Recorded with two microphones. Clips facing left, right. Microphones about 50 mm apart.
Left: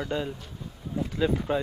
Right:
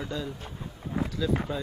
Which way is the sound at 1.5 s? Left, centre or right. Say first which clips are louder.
Left 6 dB; left.